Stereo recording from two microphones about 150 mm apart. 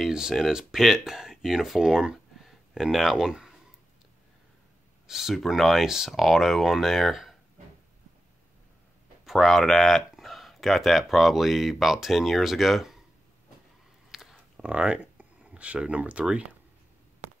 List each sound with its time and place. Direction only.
0.0 s speech: 5° right (ahead or behind)
5.0 s speech: centre (ahead or behind)
9.2 s speech: centre (ahead or behind)
14.1 s a sound: centre (ahead or behind)